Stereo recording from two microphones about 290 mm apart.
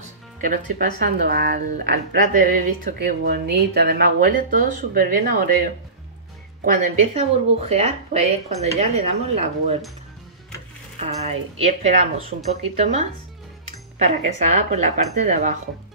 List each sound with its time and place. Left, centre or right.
0.4 s speech: right
6.6 s speech: right
11.0 s speech: right